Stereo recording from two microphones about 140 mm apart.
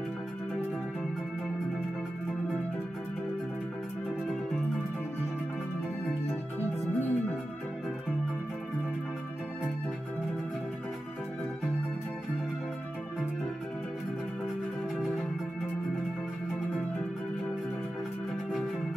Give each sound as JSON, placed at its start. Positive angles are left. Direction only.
{"t": 6.6, "sound": "music", "side_deg": 15}